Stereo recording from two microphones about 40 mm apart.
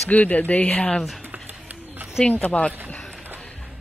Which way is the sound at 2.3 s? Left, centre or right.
Left.